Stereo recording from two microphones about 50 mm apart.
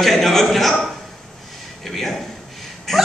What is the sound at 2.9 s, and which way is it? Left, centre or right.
Speech, centre.